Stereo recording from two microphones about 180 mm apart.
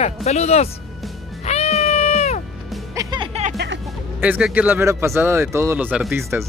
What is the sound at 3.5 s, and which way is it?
Music, 60° right (ahead or behind).